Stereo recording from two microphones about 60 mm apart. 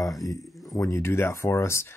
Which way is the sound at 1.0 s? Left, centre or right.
Left.